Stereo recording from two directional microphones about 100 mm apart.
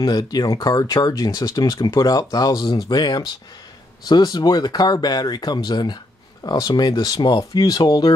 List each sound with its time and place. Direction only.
0.0 s speech: 45° left (ahead or behind)